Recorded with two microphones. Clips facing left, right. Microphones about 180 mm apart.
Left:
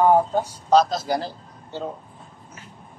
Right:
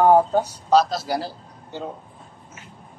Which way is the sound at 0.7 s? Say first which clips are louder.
Left 1 dB; 5° right (ahead or behind).